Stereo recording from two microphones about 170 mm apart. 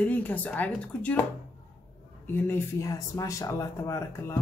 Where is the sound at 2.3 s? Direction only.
15° left (ahead or behind).